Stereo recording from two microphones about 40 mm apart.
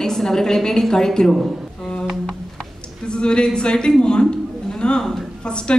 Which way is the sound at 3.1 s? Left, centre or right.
Left.